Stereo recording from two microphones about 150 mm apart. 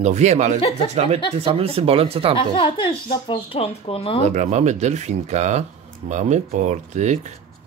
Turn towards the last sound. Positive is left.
turn(degrees=-50)  # may be behind; listen again after turning